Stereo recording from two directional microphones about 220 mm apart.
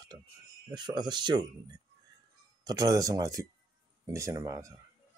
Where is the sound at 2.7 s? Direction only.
15° right (ahead or behind).